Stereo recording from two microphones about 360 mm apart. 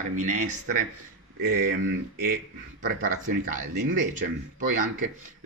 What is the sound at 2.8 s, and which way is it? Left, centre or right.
Speech, right.